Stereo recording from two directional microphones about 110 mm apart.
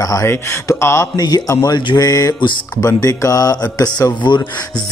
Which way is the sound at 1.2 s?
35° left (ahead or behind).